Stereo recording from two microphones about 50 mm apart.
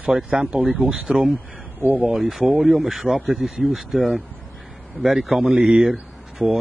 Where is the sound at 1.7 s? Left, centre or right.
Right.